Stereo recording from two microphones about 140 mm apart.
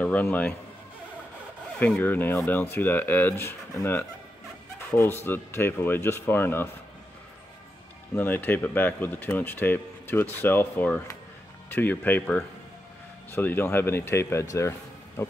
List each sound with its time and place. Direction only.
0.0 s a man's voice: 10° left (ahead or behind)
1.8 s speech: 10° left (ahead or behind)
4.9 s speech: 15° left (ahead or behind)
8.1 s speech: 15° left (ahead or behind)